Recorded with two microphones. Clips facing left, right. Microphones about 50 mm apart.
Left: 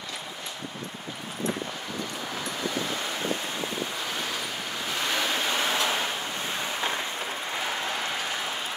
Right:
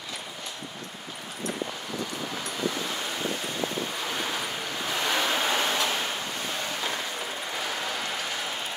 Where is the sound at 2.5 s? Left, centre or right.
Left.